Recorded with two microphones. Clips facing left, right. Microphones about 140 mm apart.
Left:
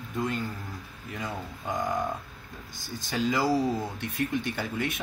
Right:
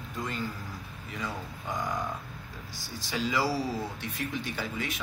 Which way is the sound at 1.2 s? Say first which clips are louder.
Left 1 dB; 50° left (ahead or behind).